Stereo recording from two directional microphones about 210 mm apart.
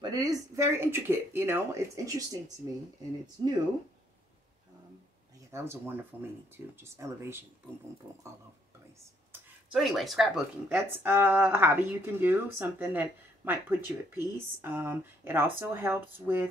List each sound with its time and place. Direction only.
0.0 s speech: 20° right (ahead or behind)
5.5 s speech: 10° right (ahead or behind)
9.3 s speech: 5° right (ahead or behind)